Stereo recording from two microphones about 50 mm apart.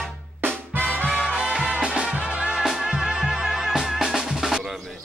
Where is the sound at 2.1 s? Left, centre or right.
Right.